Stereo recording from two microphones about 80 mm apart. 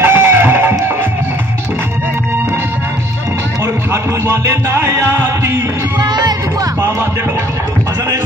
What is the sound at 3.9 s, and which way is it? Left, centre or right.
Music, right.